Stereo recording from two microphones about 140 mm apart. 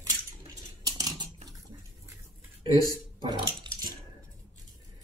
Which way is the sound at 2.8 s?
25° left (ahead or behind).